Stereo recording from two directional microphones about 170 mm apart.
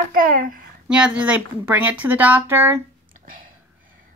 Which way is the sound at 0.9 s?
5° right (ahead or behind).